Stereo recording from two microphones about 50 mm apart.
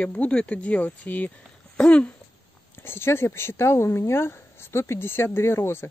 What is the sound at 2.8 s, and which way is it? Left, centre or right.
Speech, left.